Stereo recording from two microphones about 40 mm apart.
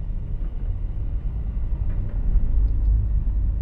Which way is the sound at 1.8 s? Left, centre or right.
Centre.